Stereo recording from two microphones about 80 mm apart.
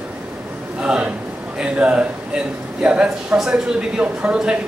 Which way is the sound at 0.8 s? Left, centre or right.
Centre.